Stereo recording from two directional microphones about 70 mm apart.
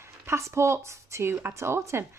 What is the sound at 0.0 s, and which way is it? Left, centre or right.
Speech, right.